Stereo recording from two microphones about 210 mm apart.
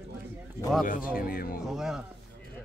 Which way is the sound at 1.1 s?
45° left (ahead or behind).